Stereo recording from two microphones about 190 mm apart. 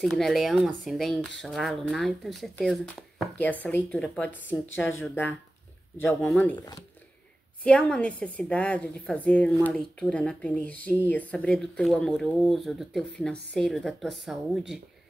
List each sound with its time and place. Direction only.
0.0 s a woman's voice: centre (ahead or behind)
6.5 s speech: 20° left (ahead or behind)
7.6 s a woman's voice: 5° left (ahead or behind)